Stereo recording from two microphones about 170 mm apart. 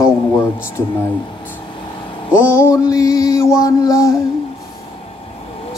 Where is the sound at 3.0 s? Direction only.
20° left (ahead or behind).